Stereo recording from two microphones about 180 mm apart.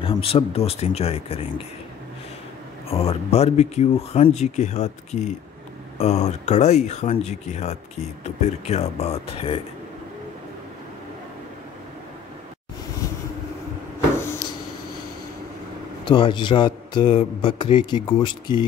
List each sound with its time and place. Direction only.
0.0 s speech: 30° left (ahead or behind)
2.9 s speech: 35° left (ahead or behind)
16.1 s speech: 25° left (ahead or behind)